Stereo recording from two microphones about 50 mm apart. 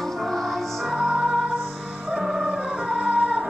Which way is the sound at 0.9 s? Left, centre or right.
Centre.